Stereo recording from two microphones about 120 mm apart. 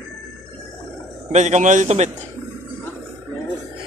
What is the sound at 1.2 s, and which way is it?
Speech, 75° right (ahead or behind).